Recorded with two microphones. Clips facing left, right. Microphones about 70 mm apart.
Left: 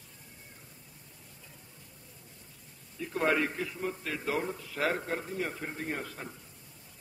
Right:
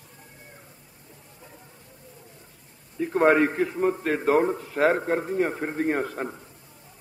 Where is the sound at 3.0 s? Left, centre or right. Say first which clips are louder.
Right 10 dB; right.